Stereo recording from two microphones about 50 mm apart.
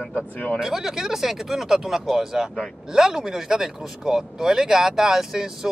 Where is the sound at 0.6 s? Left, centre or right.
Centre.